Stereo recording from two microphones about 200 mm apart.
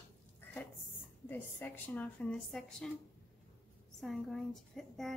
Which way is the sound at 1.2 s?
10° left (ahead or behind).